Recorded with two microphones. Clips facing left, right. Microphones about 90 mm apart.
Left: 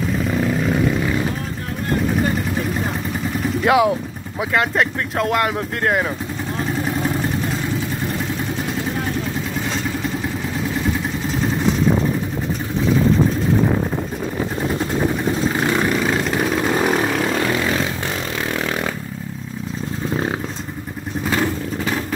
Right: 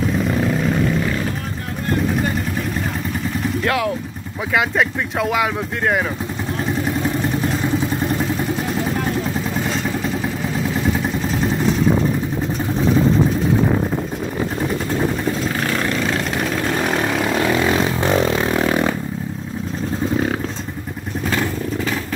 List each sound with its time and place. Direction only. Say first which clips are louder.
0.2 s vehicle: right 1 dB; centre (ahead or behind)
3.6 s speech: left 6 dB; 20° left (ahead or behind)
4.6 s speech: right 1 dB; centre (ahead or behind)
15.6 s vehicle: left 2 dB; 15° left (ahead or behind)